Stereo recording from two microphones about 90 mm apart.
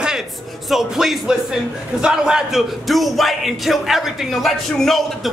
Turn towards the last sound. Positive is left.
turn(degrees=0)  # may be behind; listen again after turning